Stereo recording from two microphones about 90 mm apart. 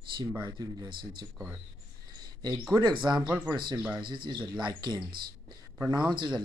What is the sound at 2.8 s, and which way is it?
Speech, 55° right (ahead or behind).